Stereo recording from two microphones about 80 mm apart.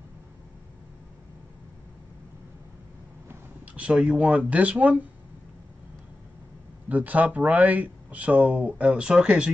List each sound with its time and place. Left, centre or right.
3.7 s speech: centre
6.9 s speech: centre